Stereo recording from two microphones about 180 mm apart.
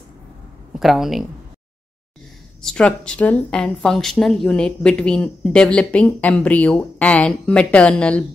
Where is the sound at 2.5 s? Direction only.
5° left (ahead or behind).